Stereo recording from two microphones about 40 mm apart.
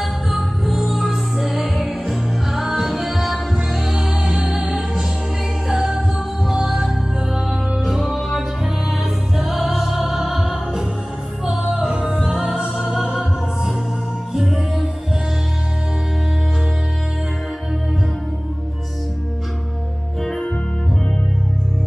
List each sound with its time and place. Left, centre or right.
0.0 s music: centre
5.7 s music: centre